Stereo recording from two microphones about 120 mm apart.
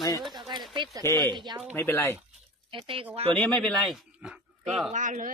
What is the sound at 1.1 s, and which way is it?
Speech, 35° right (ahead or behind).